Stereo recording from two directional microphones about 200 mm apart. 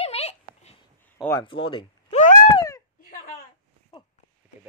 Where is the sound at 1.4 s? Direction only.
25° left (ahead or behind).